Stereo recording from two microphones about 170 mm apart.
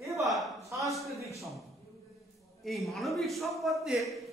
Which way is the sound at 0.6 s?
20° right (ahead or behind).